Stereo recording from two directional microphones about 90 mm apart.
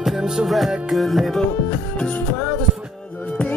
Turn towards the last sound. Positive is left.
turn(degrees=15)  # may be behind; listen again after turning